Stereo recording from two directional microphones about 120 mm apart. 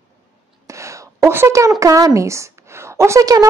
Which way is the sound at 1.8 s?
30° right (ahead or behind).